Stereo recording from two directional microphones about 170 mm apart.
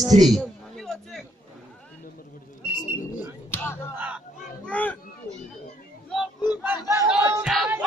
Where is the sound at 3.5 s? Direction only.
15° left (ahead or behind).